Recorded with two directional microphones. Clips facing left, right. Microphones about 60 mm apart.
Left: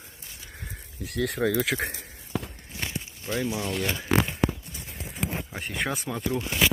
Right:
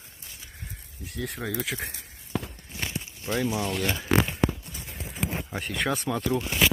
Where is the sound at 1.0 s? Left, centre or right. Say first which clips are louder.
Left 7 dB; left.